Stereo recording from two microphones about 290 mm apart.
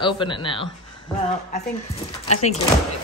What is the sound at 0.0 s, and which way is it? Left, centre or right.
A woman's voice, centre.